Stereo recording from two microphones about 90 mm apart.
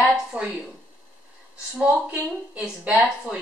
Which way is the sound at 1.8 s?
10° right (ahead or behind).